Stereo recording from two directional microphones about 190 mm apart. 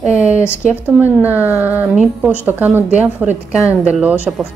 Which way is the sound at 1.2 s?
10° right (ahead or behind).